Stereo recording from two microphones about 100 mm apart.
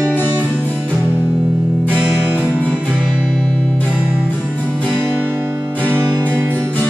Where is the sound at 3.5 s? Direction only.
15° left (ahead or behind).